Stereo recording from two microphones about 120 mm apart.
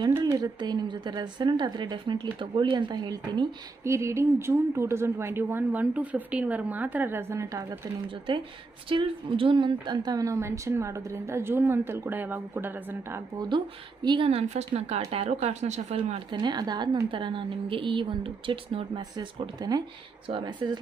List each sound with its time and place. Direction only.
0.2 s a woman's voice: 35° right (ahead or behind)
8.8 s a woman's voice: 45° right (ahead or behind); by 13.2 s 20° right (ahead or behind)
14.0 s speech: 45° right (ahead or behind)
14.9 s speech: 60° right (ahead or behind)
16.3 s a woman's voice: 40° right (ahead or behind)